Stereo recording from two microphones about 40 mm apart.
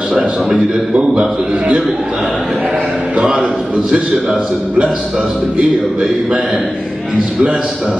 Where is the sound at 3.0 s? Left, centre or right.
Right.